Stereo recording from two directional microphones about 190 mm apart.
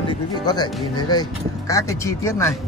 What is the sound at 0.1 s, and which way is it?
Speech, 20° left (ahead or behind).